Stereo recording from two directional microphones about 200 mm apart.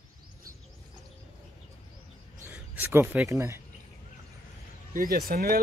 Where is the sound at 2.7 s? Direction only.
10° right (ahead or behind).